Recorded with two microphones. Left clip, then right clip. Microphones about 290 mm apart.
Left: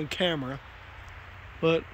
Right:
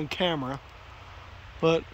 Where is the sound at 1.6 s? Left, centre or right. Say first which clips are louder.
Right 1 dB; centre.